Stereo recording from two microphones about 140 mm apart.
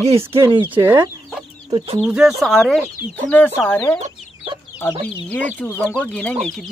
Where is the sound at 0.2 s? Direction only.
20° right (ahead or behind).